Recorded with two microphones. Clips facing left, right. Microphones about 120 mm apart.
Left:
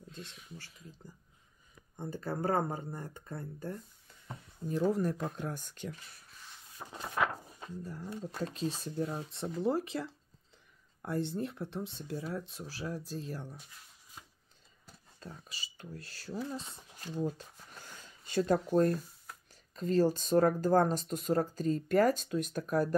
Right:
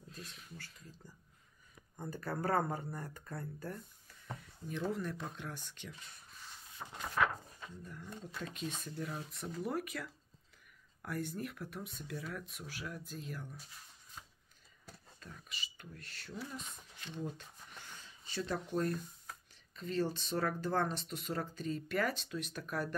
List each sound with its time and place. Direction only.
0.2 s speech: centre (ahead or behind)
2.0 s speech: 25° left (ahead or behind)
4.9 s speech: 40° left (ahead or behind)
6.8 s a sound: 10° left (ahead or behind)
7.6 s speech: 35° left (ahead or behind)
15.1 s speech: 30° left (ahead or behind)